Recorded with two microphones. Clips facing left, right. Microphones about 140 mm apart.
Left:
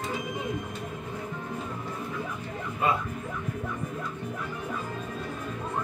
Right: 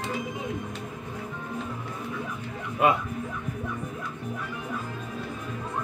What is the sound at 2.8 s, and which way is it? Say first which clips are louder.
Music: right 4 dB; 70° right (ahead or behind).